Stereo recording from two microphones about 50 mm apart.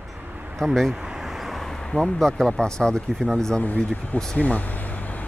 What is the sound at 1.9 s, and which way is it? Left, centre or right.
Speech, centre.